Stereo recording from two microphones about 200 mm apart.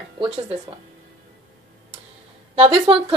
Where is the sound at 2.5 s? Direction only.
30° right (ahead or behind).